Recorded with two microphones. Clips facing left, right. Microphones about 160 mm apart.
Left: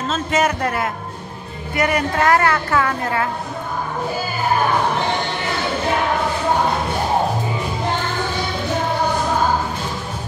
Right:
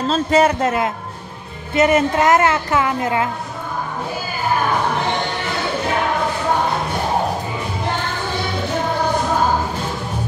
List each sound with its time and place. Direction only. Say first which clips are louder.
0.1 s a woman's voice: right 4 dB; 30° right (ahead or behind)